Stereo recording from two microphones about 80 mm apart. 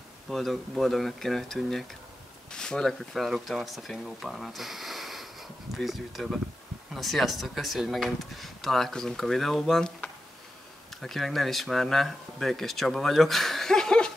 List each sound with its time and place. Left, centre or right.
0.3 s speech: centre